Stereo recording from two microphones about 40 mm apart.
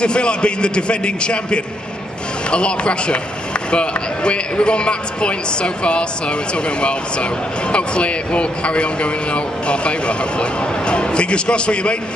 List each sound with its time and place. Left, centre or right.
0.0 s speech: left